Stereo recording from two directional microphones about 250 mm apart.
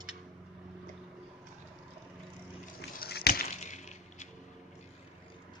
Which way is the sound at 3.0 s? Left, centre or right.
Left.